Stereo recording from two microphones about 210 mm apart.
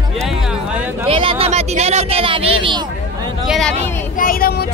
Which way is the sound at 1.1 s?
25° right (ahead or behind).